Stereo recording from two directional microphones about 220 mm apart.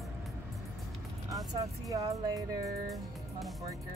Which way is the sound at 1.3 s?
15° right (ahead or behind).